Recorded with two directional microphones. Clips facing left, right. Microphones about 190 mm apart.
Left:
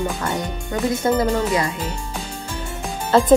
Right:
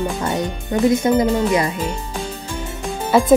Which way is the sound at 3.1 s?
10° right (ahead or behind).